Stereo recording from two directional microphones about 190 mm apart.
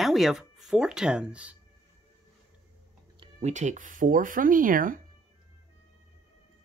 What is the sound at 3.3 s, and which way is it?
Speech, 40° right (ahead or behind).